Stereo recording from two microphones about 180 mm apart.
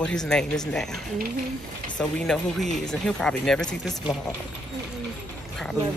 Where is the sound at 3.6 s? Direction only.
20° left (ahead or behind).